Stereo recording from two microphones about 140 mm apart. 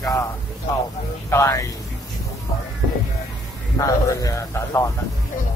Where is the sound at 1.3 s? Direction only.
20° left (ahead or behind).